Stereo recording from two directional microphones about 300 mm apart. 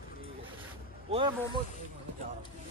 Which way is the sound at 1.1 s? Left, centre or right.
Centre.